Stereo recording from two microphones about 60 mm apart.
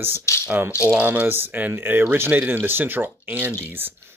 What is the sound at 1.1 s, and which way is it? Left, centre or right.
Speech, right.